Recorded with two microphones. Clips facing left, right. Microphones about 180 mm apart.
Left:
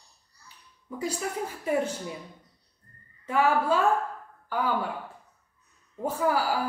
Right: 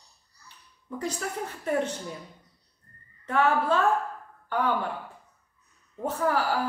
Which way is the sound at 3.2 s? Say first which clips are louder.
Even; 10° left (ahead or behind).